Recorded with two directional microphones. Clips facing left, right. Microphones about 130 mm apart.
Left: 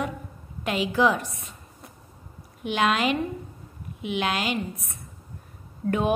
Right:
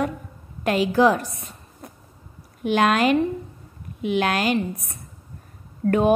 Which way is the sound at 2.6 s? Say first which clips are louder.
Right 5 dB; 45° right (ahead or behind).